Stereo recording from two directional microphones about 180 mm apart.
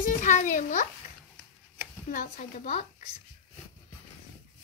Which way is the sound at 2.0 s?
45° left (ahead or behind).